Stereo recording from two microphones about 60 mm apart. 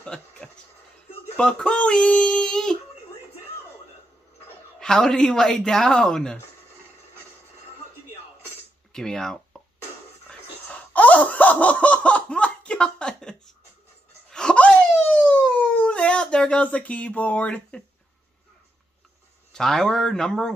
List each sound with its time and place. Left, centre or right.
0.0 s speech: centre
4.7 s speech: centre
8.9 s speech: centre
10.3 s whispering: centre
10.7 s laughter: left
14.3 s a sound: centre
16.6 s speech: left
19.5 s speech: centre